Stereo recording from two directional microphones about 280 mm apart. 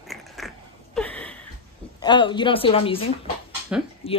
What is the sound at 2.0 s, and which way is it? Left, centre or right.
A woman's voice, centre.